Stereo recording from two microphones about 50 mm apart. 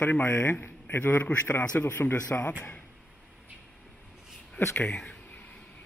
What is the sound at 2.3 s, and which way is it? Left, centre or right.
Speech, left.